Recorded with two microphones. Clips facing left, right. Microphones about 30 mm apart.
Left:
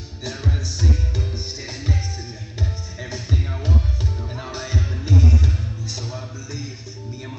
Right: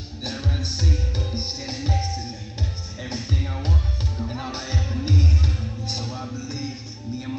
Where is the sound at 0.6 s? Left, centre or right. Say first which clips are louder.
Even; right.